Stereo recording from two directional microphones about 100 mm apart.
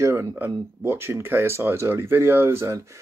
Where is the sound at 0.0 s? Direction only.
30° right (ahead or behind).